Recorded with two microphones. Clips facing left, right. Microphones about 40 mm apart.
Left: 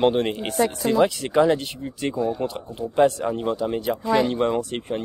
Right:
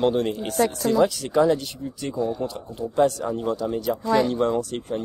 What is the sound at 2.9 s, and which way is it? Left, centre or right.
Speech, left.